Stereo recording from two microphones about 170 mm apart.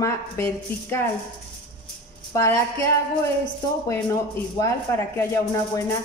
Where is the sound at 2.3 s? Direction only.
15° left (ahead or behind).